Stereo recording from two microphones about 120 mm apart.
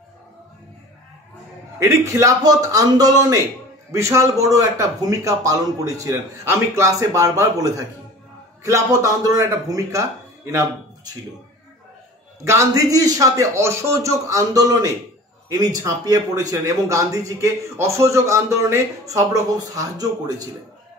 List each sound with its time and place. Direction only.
1.8 s a man's voice: 25° right (ahead or behind)
12.4 s speech: 25° right (ahead or behind)